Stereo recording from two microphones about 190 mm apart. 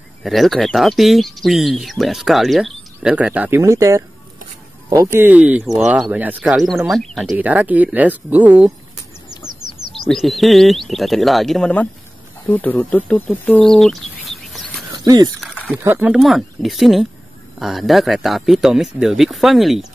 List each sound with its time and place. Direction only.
0.2 s speech: centre (ahead or behind)
9.9 s speech: centre (ahead or behind)
15.0 s speech: 20° right (ahead or behind)
15.4 s a sound: centre (ahead or behind)
15.8 s speech: 10° right (ahead or behind)